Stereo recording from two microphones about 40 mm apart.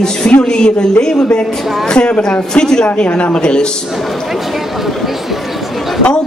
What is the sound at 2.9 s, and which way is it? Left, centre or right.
Speech, left.